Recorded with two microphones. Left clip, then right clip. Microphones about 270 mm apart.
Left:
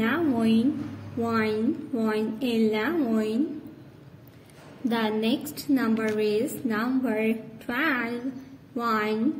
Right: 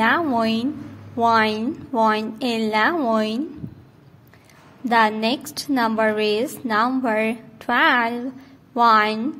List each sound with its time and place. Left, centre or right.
0.0 s a sound: right
1.2 s a woman's voice: right
4.8 s a woman's voice: right